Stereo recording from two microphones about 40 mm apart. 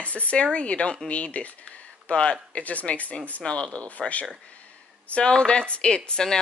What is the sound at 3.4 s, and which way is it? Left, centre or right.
Speech, left.